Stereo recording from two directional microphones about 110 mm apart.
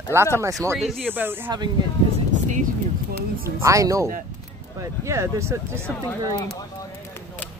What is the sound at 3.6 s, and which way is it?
Speech, 30° right (ahead or behind).